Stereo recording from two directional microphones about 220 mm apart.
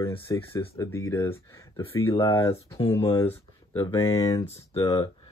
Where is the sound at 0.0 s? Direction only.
15° left (ahead or behind).